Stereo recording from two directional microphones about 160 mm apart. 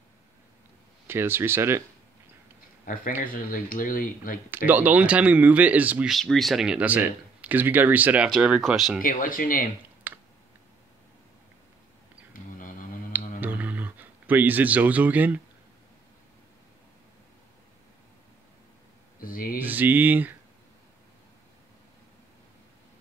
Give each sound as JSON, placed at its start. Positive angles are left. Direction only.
{"t": 1.0, "sound": "speech", "side_deg": -15}
{"t": 2.8, "sound": "speech", "side_deg": 60}
{"t": 4.5, "sound": "speech", "side_deg": -10}
{"t": 9.0, "sound": "speech", "side_deg": 60}
{"t": 10.1, "sound": "a sound", "side_deg": -10}
{"t": 12.4, "sound": "mantra", "side_deg": 55}
{"t": 13.1, "sound": "a sound", "side_deg": -10}
{"t": 19.1, "sound": "a sound", "side_deg": 60}
{"t": 19.6, "sound": "speech", "side_deg": -10}